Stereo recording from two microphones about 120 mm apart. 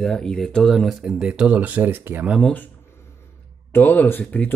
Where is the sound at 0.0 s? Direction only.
5° left (ahead or behind); by 2.3 s 15° right (ahead or behind).